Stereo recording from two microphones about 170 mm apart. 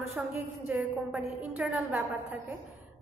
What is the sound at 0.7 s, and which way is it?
A woman's voice, 5° right (ahead or behind).